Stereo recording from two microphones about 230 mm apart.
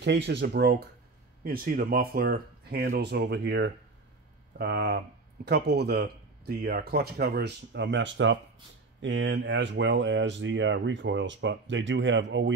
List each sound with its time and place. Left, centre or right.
0.0 s speech: right